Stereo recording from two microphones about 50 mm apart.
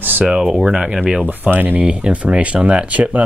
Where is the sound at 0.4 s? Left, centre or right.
Centre.